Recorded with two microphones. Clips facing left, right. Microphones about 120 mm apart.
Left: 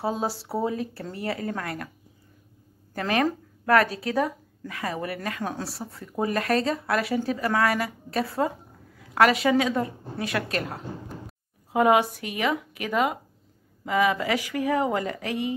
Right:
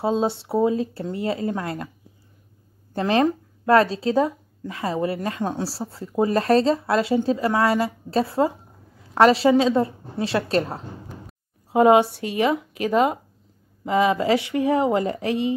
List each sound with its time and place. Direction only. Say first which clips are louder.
0.0 s speech: right 6 dB; 25° right (ahead or behind)
2.9 s speech: right 5 dB; 25° right (ahead or behind)